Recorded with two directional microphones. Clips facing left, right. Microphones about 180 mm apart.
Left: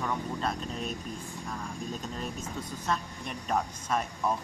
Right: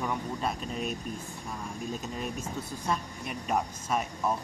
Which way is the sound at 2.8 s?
10° right (ahead or behind).